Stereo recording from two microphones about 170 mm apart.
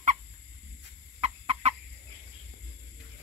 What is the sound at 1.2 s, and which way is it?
Chicken, 35° right (ahead or behind).